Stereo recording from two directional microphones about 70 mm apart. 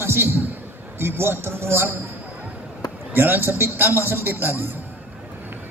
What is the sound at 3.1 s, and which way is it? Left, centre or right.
A man's voice, right.